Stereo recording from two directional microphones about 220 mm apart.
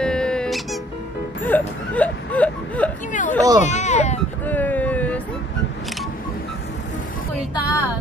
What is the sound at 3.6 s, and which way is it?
Speech, 30° left (ahead or behind).